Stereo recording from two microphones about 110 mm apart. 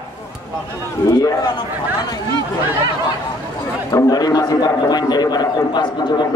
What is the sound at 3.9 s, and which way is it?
A man's voice, 35° left (ahead or behind).